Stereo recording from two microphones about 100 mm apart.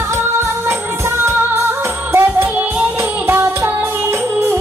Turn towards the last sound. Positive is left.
turn(degrees=-25)  # may be behind; listen again after turning